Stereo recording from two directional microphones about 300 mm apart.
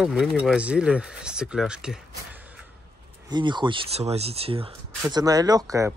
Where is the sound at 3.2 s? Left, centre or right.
Centre.